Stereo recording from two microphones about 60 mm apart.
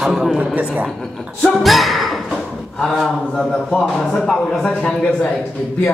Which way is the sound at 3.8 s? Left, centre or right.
Centre.